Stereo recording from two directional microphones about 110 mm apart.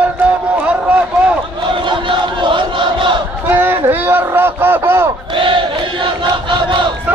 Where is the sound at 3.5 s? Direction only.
15° right (ahead or behind).